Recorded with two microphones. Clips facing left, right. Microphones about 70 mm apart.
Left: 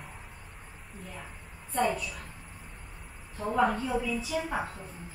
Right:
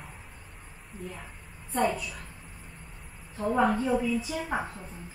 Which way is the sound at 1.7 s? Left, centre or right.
Right.